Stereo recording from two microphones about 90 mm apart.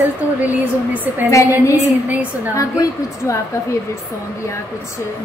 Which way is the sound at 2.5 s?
35° left (ahead or behind).